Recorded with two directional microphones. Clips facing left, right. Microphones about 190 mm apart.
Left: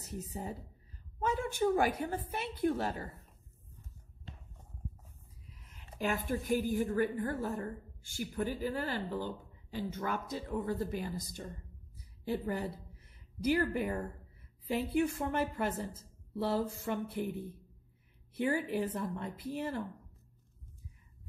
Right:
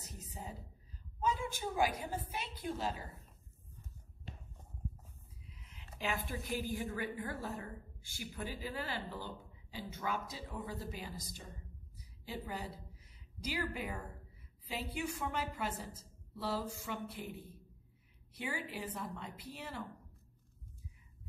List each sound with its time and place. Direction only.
1.2 s a woman's voice: 60° left (ahead or behind)
5.7 s a woman's voice: 50° left (ahead or behind)
18.3 s a woman's voice: 50° left (ahead or behind)